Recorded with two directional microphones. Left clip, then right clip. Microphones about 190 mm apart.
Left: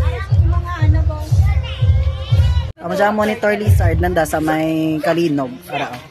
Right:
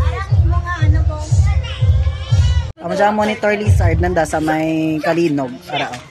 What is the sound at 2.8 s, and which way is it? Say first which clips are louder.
Speech: right 1 dB; centre (ahead or behind).